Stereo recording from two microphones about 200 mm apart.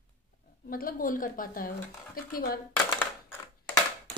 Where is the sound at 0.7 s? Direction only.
45° left (ahead or behind).